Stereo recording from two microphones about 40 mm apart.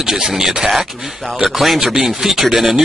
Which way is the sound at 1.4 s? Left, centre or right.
Centre.